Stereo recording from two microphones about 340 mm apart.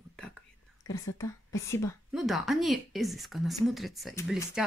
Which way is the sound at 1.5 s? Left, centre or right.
Centre.